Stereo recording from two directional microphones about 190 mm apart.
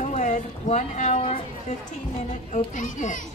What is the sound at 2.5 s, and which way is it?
Speech, 40° left (ahead or behind).